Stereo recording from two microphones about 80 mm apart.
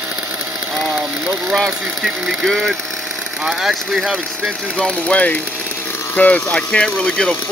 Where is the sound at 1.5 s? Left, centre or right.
Centre.